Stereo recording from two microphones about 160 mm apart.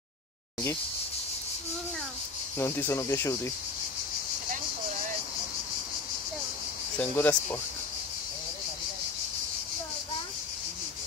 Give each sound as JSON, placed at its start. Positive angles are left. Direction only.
{"t": 2.6, "sound": "speech", "side_deg": 15}
{"t": 7.0, "sound": "speech", "side_deg": 10}